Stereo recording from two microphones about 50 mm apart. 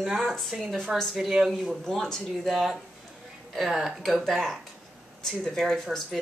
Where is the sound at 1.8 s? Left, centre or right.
Centre.